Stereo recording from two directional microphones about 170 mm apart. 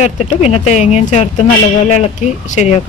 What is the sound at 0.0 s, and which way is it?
Speech, 45° left (ahead or behind).